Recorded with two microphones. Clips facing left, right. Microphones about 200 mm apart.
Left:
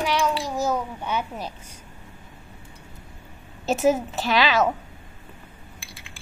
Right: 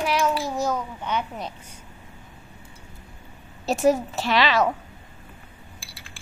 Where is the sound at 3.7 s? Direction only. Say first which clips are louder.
Even; centre (ahead or behind).